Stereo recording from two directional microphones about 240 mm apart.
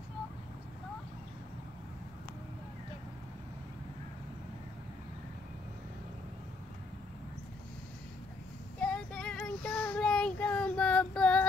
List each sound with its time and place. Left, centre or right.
8.7 s child singing: centre